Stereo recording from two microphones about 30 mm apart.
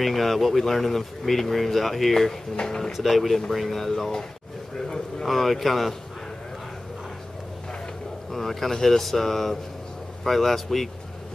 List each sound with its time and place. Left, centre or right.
0.0 s speech: centre
2.6 s speech: centre
2.9 s speech: centre
5.2 s speech: centre
8.3 s speech: centre